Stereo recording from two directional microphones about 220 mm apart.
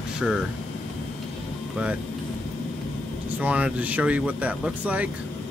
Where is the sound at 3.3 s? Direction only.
5° right (ahead or behind).